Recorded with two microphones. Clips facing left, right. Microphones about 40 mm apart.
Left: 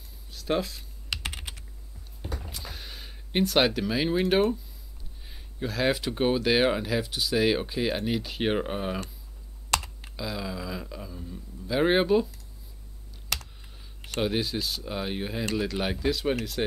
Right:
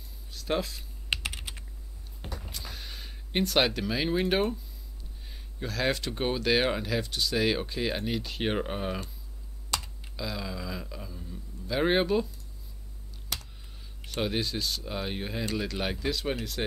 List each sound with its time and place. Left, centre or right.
0.3 s speech: centre
1.1 s typing: right
2.4 s a sound: centre
5.3 s speech: centre
9.7 s computer keyboard: left
10.1 s speech: centre
14.2 s speech: centre